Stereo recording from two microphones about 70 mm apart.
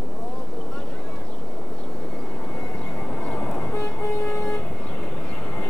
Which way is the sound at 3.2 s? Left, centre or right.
Centre.